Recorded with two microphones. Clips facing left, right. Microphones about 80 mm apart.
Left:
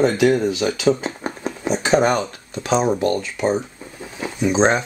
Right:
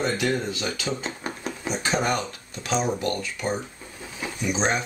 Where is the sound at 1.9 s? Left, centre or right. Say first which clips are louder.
Left 8 dB; left.